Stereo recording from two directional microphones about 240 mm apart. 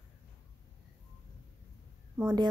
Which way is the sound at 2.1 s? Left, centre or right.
Centre.